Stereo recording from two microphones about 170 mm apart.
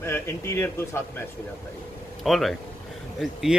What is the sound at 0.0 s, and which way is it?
A man's voice, 15° left (ahead or behind).